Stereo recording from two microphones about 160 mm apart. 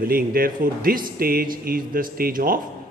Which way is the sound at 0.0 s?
65° right (ahead or behind).